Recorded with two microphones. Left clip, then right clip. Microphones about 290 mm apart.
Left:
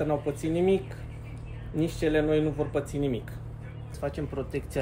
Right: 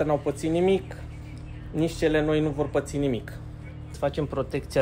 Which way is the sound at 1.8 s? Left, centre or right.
Right.